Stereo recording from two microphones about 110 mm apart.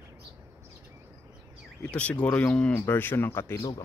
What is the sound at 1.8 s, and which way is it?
Speech, 10° left (ahead or behind).